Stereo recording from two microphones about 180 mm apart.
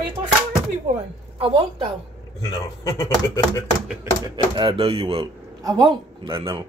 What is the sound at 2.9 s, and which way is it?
Speech, 15° left (ahead or behind).